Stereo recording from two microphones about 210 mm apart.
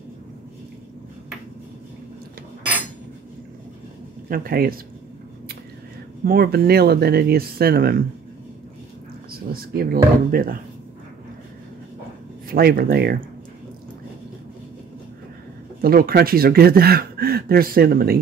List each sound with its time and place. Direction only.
4.3 s speech: 45° right (ahead or behind)
6.2 s speech: 45° right (ahead or behind)
9.5 s speech: 45° right (ahead or behind)
12.4 s speech: 45° right (ahead or behind)
15.8 s speech: 45° right (ahead or behind)